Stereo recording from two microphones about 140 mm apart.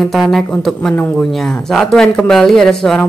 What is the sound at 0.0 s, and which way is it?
Speech, centre (ahead or behind).